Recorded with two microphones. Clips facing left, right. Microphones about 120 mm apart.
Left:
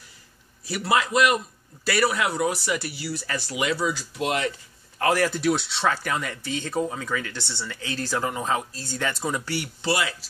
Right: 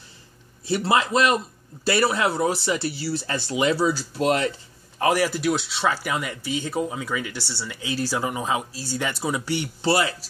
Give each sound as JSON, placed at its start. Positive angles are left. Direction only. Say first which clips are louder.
{"t": 0.7, "sound": "a man's voice", "louder": "right 2 dB", "side_deg": -30}
{"t": 4.9, "sound": "speech", "louder": "right 1 dB", "side_deg": -15}
{"t": 9.8, "sound": "speech", "louder": "right 4 dB", "side_deg": -35}